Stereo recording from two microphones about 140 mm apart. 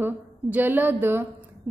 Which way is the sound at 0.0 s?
10° right (ahead or behind).